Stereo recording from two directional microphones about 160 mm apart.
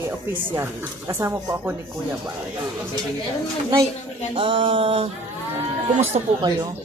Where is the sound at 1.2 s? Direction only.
15° right (ahead or behind).